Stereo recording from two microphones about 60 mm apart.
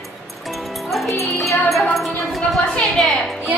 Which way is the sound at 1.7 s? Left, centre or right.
Centre.